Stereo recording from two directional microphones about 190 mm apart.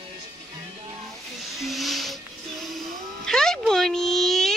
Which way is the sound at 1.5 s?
Centre (ahead or behind).